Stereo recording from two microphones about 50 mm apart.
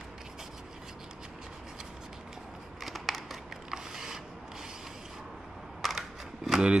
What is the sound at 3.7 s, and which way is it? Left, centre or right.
Mechanisms, centre.